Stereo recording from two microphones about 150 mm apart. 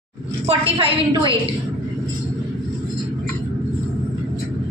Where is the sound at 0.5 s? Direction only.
35° right (ahead or behind).